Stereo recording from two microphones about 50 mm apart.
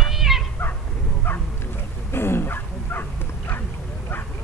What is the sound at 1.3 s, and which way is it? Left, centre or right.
Bow-wow, left.